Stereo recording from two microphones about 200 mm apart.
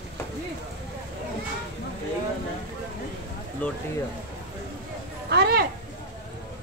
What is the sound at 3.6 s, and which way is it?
Speech, 10° left (ahead or behind).